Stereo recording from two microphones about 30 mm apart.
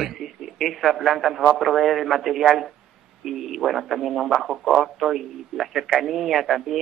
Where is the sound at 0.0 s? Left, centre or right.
Centre.